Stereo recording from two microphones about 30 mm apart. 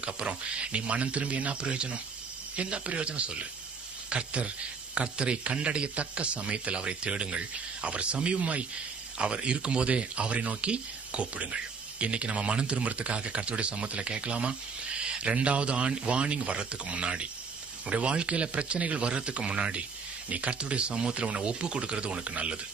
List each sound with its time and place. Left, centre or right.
0.0 s speech: right
9.2 s speech: right
22.2 s speech: right